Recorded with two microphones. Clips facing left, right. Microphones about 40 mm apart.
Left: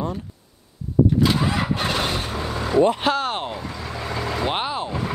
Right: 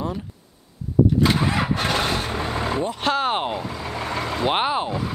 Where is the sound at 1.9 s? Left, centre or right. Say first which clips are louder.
Right 1 dB; right.